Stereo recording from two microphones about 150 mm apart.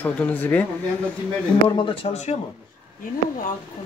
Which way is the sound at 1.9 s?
45° left (ahead or behind).